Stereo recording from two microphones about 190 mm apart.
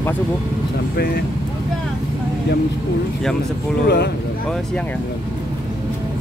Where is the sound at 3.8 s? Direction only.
60° left (ahead or behind).